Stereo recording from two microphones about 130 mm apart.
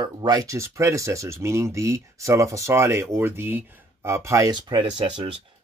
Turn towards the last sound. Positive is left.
turn(degrees=-35)  # may be behind; listen again after turning